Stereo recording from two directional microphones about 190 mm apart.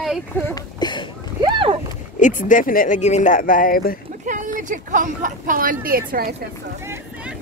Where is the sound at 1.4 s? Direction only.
25° right (ahead or behind).